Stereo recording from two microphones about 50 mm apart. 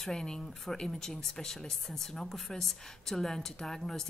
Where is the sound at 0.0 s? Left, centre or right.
Centre.